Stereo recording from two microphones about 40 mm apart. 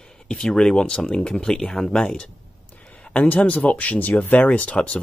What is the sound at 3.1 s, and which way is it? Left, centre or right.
Speech, left.